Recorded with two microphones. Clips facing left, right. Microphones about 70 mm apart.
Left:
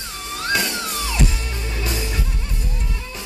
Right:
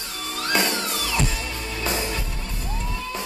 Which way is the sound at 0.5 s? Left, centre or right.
Right.